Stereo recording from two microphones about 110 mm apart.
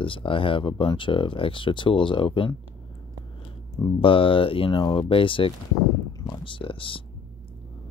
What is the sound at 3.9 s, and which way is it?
Speech, 55° left (ahead or behind).